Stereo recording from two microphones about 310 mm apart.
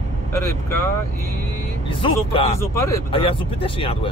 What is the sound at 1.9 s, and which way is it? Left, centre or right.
Speech, centre.